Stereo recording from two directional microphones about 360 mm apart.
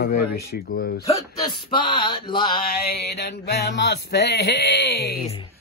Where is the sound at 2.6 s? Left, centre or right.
Left.